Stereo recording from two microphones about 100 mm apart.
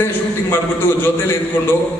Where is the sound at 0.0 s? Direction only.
20° left (ahead or behind).